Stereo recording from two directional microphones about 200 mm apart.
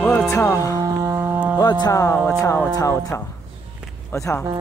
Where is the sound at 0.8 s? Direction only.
15° right (ahead or behind).